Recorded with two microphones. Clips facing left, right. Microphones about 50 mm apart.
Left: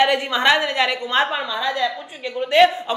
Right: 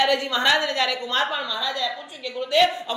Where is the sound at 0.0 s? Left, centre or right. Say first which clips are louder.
Left 3 dB; left.